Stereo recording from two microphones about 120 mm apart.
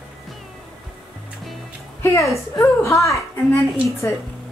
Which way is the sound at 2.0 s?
25° left (ahead or behind).